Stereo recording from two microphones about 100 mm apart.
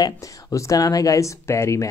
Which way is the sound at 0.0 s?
35° left (ahead or behind).